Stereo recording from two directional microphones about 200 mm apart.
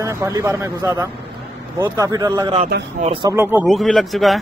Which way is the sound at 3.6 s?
Centre (ahead or behind).